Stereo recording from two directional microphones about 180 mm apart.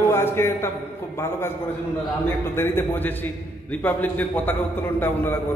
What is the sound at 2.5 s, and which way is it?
A man's voice, 15° left (ahead or behind).